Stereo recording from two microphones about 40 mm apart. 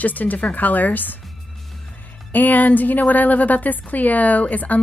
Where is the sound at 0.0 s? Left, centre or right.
Left.